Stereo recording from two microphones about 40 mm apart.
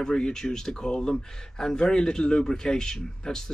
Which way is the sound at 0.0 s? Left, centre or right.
Centre.